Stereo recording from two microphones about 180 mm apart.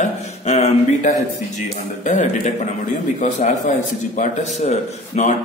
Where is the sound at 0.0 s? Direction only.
35° left (ahead or behind).